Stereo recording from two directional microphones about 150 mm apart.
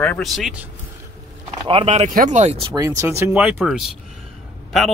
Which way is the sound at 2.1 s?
55° right (ahead or behind).